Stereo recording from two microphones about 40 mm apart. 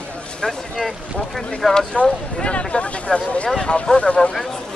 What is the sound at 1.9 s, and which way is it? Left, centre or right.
Speech, left.